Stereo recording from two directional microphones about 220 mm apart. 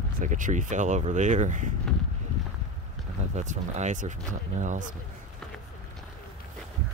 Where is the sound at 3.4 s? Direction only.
30° right (ahead or behind).